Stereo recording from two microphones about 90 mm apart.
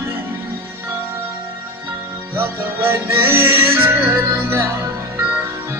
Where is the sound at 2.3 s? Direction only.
25° right (ahead or behind).